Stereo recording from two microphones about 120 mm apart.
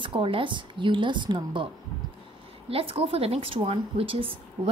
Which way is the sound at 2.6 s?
55° right (ahead or behind).